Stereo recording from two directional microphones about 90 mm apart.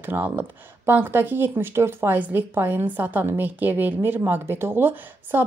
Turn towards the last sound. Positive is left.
turn(degrees=-25)  # may be behind; listen again after turning